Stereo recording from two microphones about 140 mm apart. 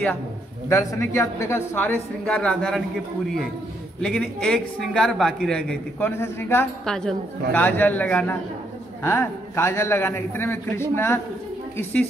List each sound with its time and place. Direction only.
0.7 s speech: 20° left (ahead or behind)
2.2 s a woman's voice: 5° left (ahead or behind)
4.0 s a woman's voice: 5° left (ahead or behind)
6.9 s a man's voice: 5° left (ahead or behind)